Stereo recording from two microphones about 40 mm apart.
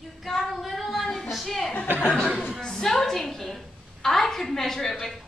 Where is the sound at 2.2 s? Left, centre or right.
Centre.